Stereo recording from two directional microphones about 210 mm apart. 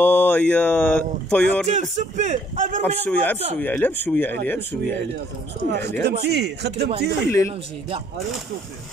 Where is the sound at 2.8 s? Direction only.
5° left (ahead or behind).